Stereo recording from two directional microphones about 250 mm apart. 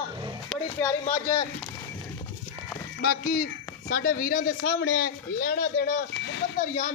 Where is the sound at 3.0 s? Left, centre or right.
Left.